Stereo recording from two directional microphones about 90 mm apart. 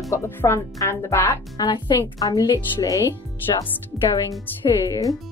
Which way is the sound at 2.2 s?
45° left (ahead or behind).